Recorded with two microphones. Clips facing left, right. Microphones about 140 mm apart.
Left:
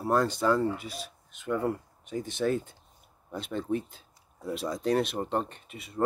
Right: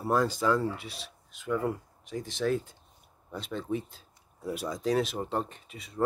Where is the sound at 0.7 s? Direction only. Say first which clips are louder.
Left 4 dB; 45° left (ahead or behind).